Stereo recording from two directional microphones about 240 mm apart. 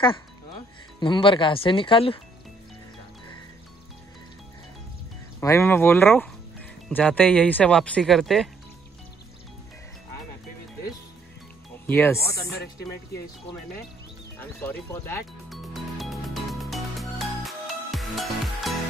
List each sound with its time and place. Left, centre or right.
0.9 s speech: centre
5.4 s speech: centre
11.8 s speech: centre
12.5 s speech: left
14.6 s music: centre